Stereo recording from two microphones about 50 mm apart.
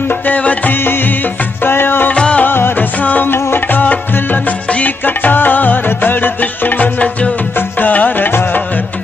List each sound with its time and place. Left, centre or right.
0.3 s music: left
1.6 s music: left
2.1 s music: left
2.4 s music of bollywood: left
3.0 s music: left
3.3 s music: left